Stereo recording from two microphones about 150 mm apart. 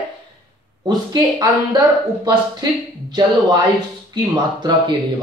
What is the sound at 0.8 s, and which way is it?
Speech, 25° right (ahead or behind).